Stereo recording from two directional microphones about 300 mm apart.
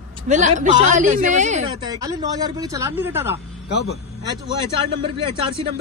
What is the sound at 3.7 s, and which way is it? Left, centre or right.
Speech, left.